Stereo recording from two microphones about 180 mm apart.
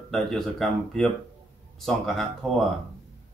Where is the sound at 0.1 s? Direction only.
Centre (ahead or behind).